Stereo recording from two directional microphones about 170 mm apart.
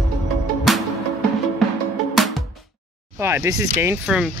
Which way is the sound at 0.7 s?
Centre (ahead or behind).